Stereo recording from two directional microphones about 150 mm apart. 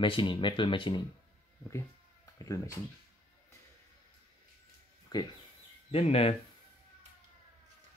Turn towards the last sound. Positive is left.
turn(degrees=40)  # may be behind; listen again after turning